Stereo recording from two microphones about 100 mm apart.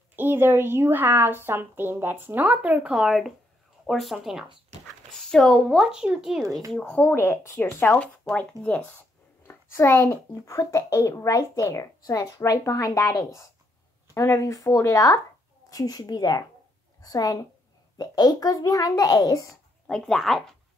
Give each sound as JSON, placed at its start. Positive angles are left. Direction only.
{"t": 0.1, "sound": "a woman's voice", "side_deg": -20}
{"t": 6.4, "sound": "speech", "side_deg": -35}
{"t": 6.8, "sound": "speech", "side_deg": 20}
{"t": 9.5, "sound": "a child's voice", "side_deg": 25}
{"t": 19.9, "sound": "speech", "side_deg": 5}